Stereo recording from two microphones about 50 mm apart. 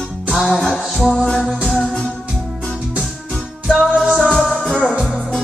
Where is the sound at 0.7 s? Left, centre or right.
Centre.